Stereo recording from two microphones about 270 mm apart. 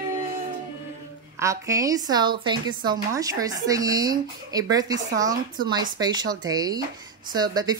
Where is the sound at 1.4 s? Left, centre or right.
Centre.